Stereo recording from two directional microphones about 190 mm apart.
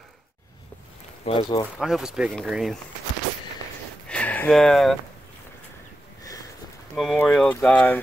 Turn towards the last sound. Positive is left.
turn(degrees=5)  # may be behind; listen again after turning